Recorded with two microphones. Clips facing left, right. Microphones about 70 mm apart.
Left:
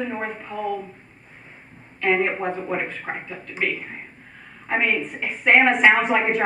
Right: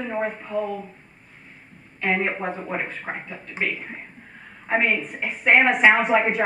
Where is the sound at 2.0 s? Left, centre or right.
Centre.